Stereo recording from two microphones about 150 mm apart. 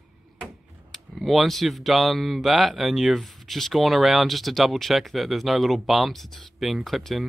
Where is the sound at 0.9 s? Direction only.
Centre (ahead or behind).